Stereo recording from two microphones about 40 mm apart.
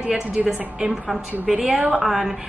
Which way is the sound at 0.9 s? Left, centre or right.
Centre.